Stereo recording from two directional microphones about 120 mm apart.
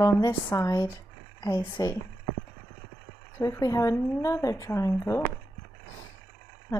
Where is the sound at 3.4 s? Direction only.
30° left (ahead or behind).